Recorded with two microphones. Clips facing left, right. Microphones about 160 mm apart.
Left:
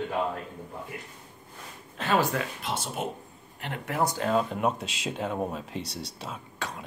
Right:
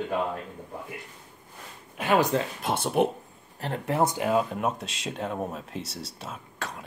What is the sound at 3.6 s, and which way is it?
Speech, 35° right (ahead or behind).